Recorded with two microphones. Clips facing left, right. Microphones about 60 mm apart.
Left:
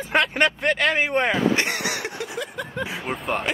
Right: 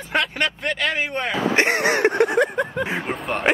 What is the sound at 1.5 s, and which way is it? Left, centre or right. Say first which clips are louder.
Speech: right 7 dB; right.